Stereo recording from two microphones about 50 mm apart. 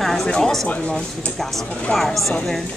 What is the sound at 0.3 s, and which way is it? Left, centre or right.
Speech, centre.